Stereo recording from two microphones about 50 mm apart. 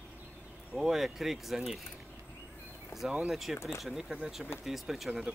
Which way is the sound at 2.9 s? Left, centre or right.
Left.